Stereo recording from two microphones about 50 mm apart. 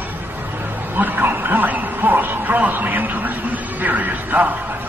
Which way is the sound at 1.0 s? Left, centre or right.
Right.